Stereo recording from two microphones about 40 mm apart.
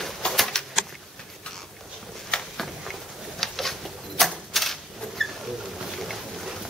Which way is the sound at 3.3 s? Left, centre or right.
Centre.